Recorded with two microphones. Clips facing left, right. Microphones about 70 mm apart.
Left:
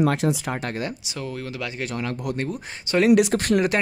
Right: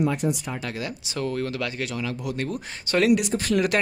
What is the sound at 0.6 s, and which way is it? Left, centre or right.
Speech, left.